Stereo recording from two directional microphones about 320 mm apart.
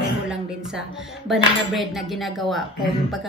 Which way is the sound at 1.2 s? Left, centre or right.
Centre.